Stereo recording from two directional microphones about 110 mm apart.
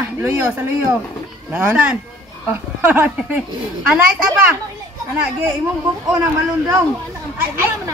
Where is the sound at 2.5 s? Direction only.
15° right (ahead or behind).